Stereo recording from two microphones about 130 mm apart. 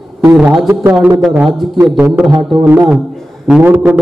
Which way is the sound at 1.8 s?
15° right (ahead or behind).